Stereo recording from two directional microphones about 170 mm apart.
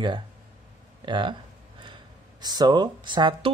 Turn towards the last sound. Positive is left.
turn(degrees=-25)  # may be behind; listen again after turning